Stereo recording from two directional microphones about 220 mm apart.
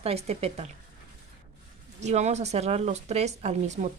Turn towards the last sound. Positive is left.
turn(degrees=-30)  # may be behind; listen again after turning